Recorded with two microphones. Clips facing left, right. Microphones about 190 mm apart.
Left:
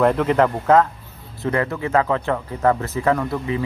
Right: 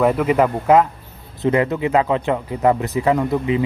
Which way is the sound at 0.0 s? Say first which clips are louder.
Right 1 dB; 5° right (ahead or behind).